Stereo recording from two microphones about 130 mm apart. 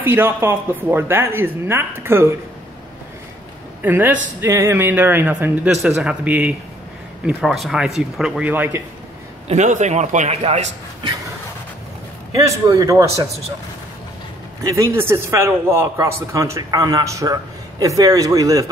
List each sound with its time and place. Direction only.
0.0 s speech: 20° right (ahead or behind)
3.8 s speech: 15° right (ahead or behind)
7.2 s speech: centre (ahead or behind)
9.5 s a man's voice: 65° right (ahead or behind)
12.4 s a man's voice: 25° right (ahead or behind)
14.6 s a man's voice: 25° right (ahead or behind)